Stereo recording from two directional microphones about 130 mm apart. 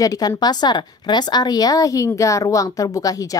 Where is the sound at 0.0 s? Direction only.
30° left (ahead or behind).